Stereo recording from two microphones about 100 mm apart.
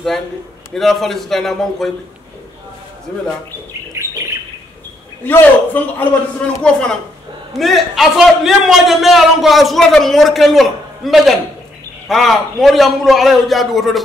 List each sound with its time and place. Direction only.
0.7 s a man's voice: centre (ahead or behind)
5.2 s a man's voice: 20° left (ahead or behind); by 14.0 s centre (ahead or behind)